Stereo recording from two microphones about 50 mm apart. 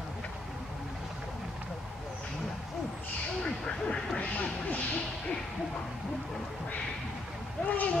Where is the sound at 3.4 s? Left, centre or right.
Left.